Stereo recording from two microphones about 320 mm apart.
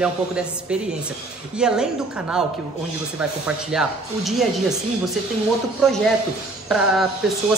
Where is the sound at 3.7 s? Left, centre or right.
Centre.